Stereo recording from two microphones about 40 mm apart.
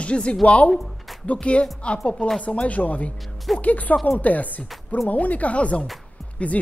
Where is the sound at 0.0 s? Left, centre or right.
Left.